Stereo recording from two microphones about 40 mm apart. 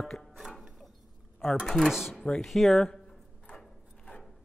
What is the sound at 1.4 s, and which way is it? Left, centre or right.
Speech, centre.